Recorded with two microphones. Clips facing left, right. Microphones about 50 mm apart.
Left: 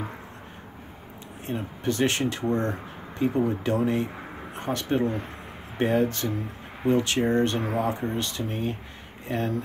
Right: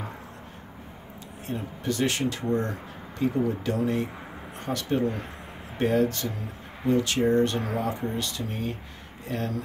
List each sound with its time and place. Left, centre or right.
1.4 s speech: left
6.9 s speech: left
7.5 s speech: centre
8.1 s speech: left